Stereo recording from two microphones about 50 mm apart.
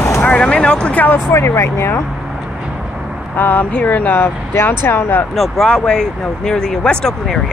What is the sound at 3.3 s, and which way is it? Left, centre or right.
Speech, left.